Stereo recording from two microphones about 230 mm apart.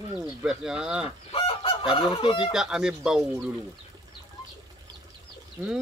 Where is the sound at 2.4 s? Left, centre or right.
Centre.